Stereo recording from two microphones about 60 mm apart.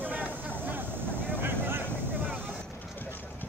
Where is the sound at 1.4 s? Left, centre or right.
Right.